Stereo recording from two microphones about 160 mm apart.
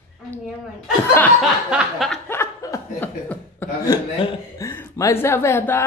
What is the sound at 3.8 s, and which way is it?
Speech, 25° left (ahead or behind).